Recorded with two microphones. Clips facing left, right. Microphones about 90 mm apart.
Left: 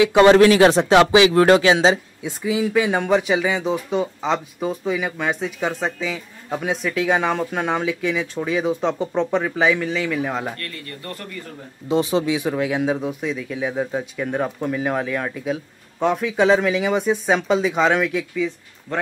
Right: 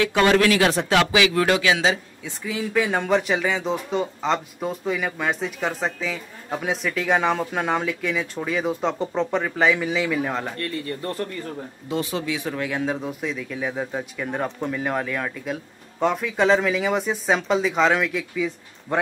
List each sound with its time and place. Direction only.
0.0 s speech: 20° left (ahead or behind)
2.4 s speech: 10° left (ahead or behind)
10.6 s speech: 30° right (ahead or behind)
11.9 s speech: 20° left (ahead or behind); by 18.9 s 5° right (ahead or behind)